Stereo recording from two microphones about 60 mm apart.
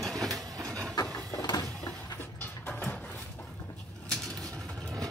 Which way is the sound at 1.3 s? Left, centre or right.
Left.